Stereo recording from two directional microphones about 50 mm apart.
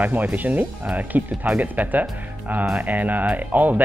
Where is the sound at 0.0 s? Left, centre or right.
Right.